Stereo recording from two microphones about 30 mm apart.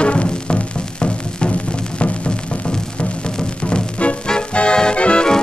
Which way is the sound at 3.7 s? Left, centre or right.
Left.